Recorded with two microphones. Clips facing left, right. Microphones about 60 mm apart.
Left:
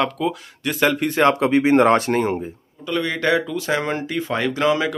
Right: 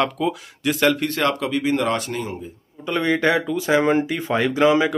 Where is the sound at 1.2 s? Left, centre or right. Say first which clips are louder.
Left 5 dB; left.